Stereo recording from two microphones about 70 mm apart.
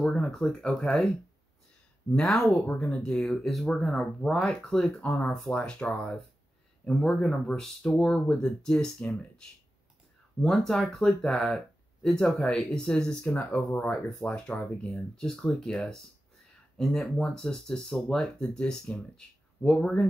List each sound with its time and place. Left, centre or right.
0.0 s speech: centre
2.1 s speech: centre